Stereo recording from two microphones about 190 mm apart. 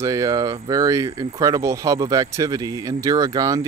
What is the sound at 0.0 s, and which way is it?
Speech, 20° right (ahead or behind).